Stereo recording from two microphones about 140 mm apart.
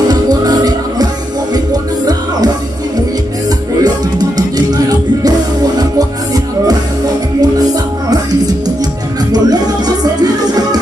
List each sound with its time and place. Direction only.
0.1 s music: 30° right (ahead or behind)
8.1 s music: 30° right (ahead or behind)